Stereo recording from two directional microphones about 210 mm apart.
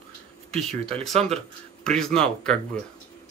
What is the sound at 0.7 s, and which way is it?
Speech, 25° right (ahead or behind).